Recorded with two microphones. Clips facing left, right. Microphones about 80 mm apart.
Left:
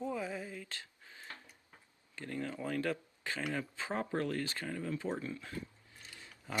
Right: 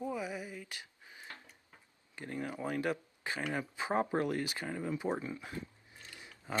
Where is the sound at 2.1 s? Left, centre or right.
Centre.